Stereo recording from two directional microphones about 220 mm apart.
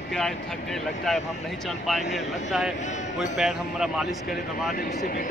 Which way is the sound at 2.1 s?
Centre (ahead or behind).